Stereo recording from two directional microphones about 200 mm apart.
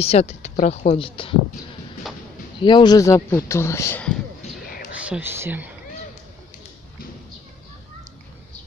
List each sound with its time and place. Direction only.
0.0 s speech: 30° left (ahead or behind)
2.6 s speech: 20° left (ahead or behind)
4.4 s a sound: 45° left (ahead or behind)
4.9 s speech: 5° right (ahead or behind)